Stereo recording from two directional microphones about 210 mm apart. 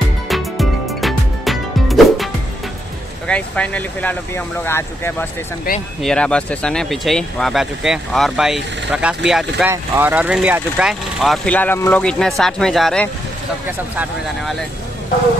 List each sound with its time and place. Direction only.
0.3 s music: centre (ahead or behind)
3.3 s speech: 5° left (ahead or behind)
5.7 s speech: 45° left (ahead or behind)
6.0 s speech: 5° left (ahead or behind)